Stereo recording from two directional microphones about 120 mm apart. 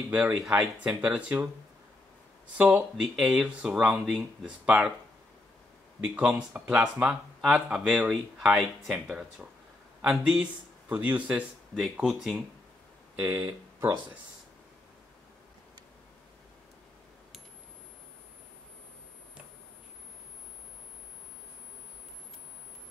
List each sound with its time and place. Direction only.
0.1 s speech: 5° right (ahead or behind)
2.5 s speech: 10° right (ahead or behind)
6.1 s speech: 10° right (ahead or behind)
13.2 s speech: 15° right (ahead or behind)